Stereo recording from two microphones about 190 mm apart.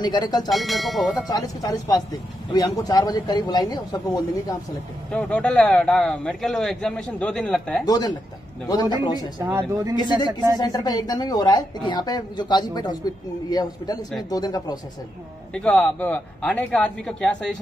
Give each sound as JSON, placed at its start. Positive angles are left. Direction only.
{"t": 0.0, "sound": "speech", "side_deg": 20}
{"t": 0.5, "sound": "a man's voice", "side_deg": 0}
{"t": 1.3, "sound": "speech", "side_deg": 20}
{"t": 5.1, "sound": "a man's voice", "side_deg": 5}
{"t": 7.8, "sound": "speech", "side_deg": 20}
{"t": 9.4, "sound": "speech", "side_deg": -15}
{"t": 10.6, "sound": "speech", "side_deg": 20}
{"t": 15.5, "sound": "a man's voice", "side_deg": 5}